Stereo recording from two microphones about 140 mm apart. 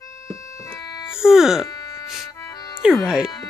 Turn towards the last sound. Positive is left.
turn(degrees=-5)  # may be behind; listen again after turning